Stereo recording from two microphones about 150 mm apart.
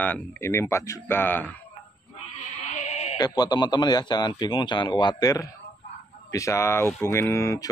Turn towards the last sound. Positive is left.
turn(degrees=20)  # may be behind; listen again after turning